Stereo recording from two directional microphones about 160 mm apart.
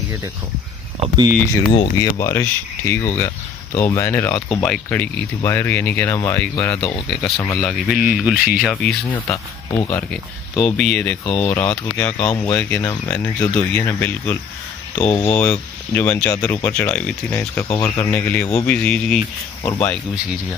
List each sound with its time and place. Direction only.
1.0 s speech: 25° right (ahead or behind)
1.7 s speech: 35° left (ahead or behind)
2.1 s speech: 15° left (ahead or behind)
7.1 s speech: centre (ahead or behind)
9.1 s speech: 15° left (ahead or behind)
10.1 s speech: 5° left (ahead or behind)
17.7 s speech: 20° left (ahead or behind)
18.1 s speech: 10° left (ahead or behind)
19.6 s speech: 20° left (ahead or behind)